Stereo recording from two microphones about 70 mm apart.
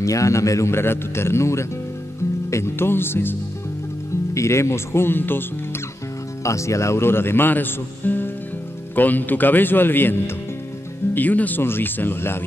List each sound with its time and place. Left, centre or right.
0.0 s speech: left
4.3 s speech: left
6.4 s speech: left